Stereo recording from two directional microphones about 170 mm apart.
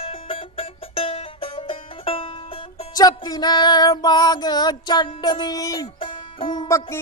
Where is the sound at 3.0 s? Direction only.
20° left (ahead or behind).